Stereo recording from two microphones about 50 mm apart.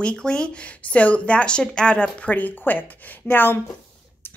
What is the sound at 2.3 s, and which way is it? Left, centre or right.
A woman's voice, left.